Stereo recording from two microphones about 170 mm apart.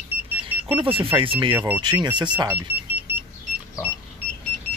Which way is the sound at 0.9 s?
30° right (ahead or behind).